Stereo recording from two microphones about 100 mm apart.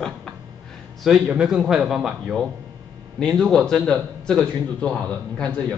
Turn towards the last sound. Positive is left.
turn(degrees=10)  # may be behind; listen again after turning